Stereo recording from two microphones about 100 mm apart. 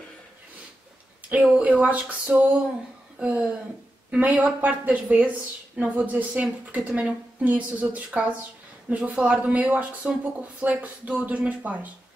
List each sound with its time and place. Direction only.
1.3 s a woman's voice: 15° right (ahead or behind)